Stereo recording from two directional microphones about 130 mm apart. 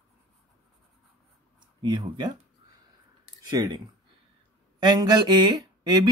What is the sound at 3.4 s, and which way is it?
Speech, 35° right (ahead or behind).